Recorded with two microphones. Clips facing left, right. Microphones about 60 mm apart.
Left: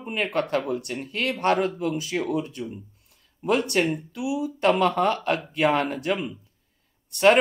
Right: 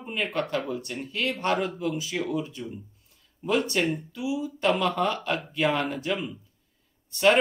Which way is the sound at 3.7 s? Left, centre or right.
Left.